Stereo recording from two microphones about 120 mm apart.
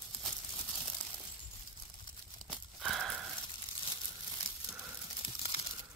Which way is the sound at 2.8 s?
Centre (ahead or behind).